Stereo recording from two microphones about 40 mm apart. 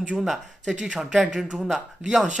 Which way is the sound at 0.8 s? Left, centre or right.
Centre.